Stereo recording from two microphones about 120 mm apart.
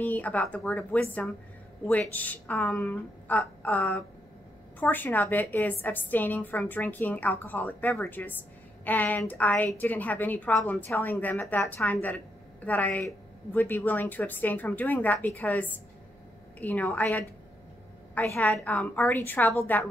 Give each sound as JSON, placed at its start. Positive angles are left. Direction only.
{"t": 0.0, "sound": "a woman's voice", "side_deg": 15}
{"t": 18.2, "sound": "a woman's voice", "side_deg": 15}